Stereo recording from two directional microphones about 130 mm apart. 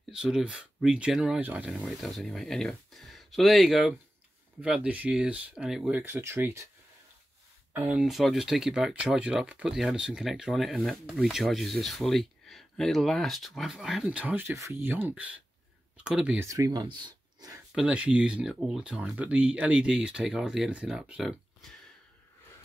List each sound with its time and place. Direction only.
0.1 s speech: 5° right (ahead or behind); by 6.7 s 20° right (ahead or behind)
7.7 s speech: 10° right (ahead or behind)
16.3 s speech: 25° right (ahead or behind)
17.7 s speech: 10° right (ahead or behind)